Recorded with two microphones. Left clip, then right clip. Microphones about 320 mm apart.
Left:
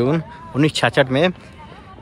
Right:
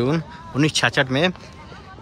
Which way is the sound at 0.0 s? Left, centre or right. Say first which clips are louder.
Left 3 dB; centre.